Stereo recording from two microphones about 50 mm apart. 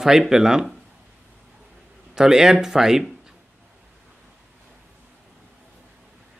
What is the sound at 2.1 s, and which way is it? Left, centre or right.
Speech, centre.